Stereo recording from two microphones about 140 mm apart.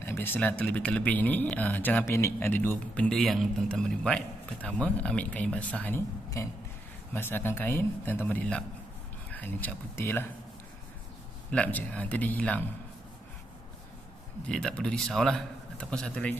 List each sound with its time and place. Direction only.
0.0 s speech: 15° left (ahead or behind)
6.4 s speech: 20° left (ahead or behind)
11.5 s speech: 10° left (ahead or behind)
14.5 s a man's voice: 5° left (ahead or behind)